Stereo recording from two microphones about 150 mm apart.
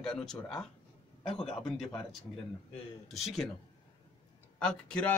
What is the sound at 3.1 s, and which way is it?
Speech, centre (ahead or behind).